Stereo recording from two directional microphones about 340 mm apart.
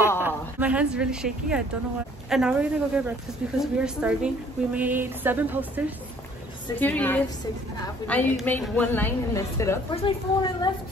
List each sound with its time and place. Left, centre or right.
0.3 s speech: centre
2.2 s a sound: centre
7.8 s a woman's voice: centre